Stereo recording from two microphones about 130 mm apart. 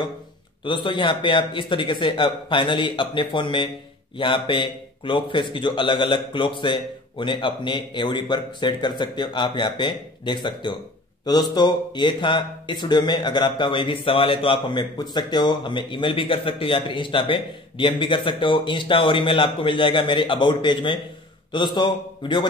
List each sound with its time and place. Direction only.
0.7 s speech: 40° left (ahead or behind)